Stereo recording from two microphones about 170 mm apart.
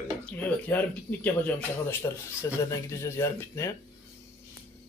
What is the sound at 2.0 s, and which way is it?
Speech, 25° left (ahead or behind).